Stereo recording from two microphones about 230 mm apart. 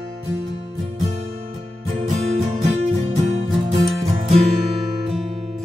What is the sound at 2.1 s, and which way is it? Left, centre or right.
Music, right.